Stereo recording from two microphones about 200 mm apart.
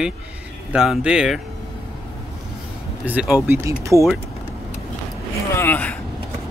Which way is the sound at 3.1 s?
5° right (ahead or behind).